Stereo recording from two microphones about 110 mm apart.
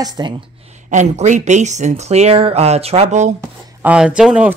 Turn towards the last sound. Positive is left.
turn(degrees=-10)  # may be behind; listen again after turning